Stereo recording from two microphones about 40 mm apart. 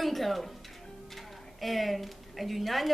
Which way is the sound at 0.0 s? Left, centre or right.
Centre.